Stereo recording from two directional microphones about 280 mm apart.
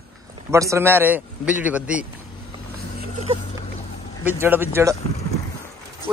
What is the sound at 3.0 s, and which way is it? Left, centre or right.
Vehicle, right.